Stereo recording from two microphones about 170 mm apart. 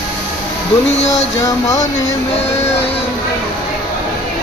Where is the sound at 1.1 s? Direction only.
20° left (ahead or behind).